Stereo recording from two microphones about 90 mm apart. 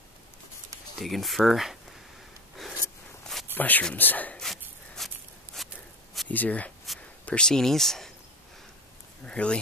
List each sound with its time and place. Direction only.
0.9 s speech: centre (ahead or behind)
3.5 s speech: 20° left (ahead or behind)
4.4 s walk: 5° left (ahead or behind)
6.2 s speech: 20° left (ahead or behind)
9.2 s speech: 10° left (ahead or behind)